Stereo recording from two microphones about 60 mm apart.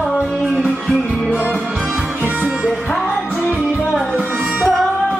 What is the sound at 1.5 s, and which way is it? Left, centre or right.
Music, right.